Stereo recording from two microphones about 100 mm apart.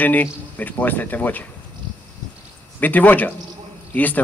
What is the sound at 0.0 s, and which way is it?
A man's voice, 15° left (ahead or behind).